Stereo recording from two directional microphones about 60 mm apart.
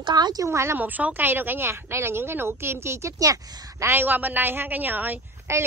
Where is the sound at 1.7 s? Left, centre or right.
Right.